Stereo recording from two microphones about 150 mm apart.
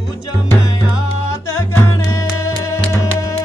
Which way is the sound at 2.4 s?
20° left (ahead or behind).